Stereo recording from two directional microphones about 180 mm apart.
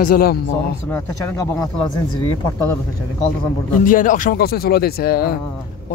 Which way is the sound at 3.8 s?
45° left (ahead or behind).